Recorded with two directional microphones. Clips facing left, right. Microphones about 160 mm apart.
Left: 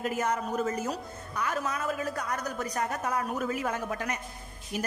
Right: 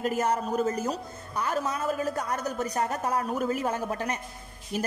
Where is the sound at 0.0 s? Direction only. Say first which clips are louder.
Right 3 dB; 35° right (ahead or behind).